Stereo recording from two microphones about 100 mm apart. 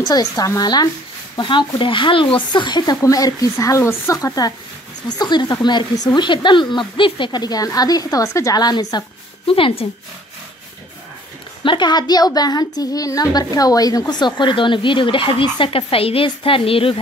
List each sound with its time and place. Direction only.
0.1 s speech: 35° left (ahead or behind)
1.3 s speech: 50° left (ahead or behind)
3.0 s a woman's voice: 35° left (ahead or behind)
8.5 s a woman's voice: 45° left (ahead or behind)
9.5 s a woman's voice: 65° left (ahead or behind)
11.6 s a woman's voice: 50° left (ahead or behind)
15.7 s a woman's voice: 70° left (ahead or behind)